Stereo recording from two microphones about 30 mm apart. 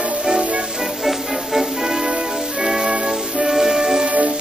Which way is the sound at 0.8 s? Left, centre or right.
Centre.